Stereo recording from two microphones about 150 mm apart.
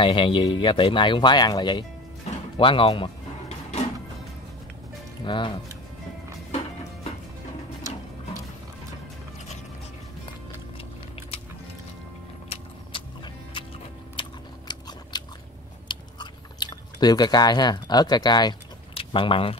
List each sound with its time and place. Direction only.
0.0 s speech: 35° left (ahead or behind)
2.5 s music: 35° left (ahead or behind)
5.2 s speech: 30° left (ahead or behind)
12.4 s vehicle: 35° left (ahead or behind)
14.7 s biting: 30° left (ahead or behind)
15.9 s chewing: 30° left (ahead or behind)